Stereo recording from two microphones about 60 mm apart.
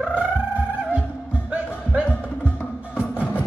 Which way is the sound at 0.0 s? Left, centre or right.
Right.